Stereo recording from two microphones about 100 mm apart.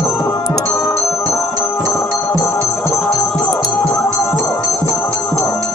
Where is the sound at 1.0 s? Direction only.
60° left (ahead or behind).